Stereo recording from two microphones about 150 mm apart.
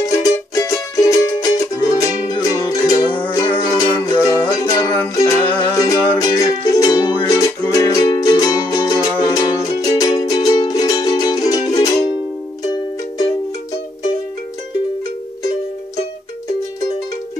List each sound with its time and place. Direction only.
0.0 s music: 25° left (ahead or behind)